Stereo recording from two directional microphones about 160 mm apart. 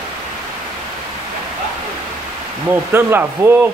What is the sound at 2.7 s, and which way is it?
Speech, 15° right (ahead or behind).